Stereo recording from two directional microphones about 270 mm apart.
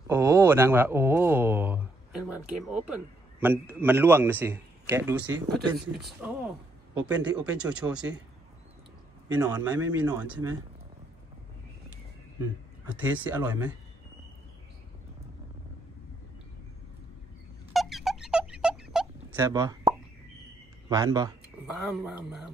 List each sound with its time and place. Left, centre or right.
0.1 s speech: centre
9.3 s speech: centre
13.0 s speech: centre
17.7 s a sound: centre
20.9 s speech: centre